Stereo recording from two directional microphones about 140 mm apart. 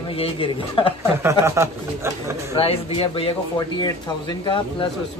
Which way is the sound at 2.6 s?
45° left (ahead or behind).